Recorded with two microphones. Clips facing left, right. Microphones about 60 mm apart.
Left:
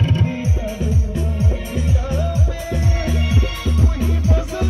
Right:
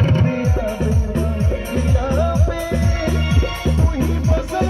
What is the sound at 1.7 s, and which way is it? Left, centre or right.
Music, right.